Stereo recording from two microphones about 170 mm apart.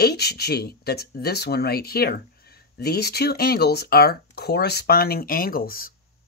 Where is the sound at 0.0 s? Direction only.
70° left (ahead or behind).